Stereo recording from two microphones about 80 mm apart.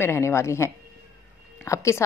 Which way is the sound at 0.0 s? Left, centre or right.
Left.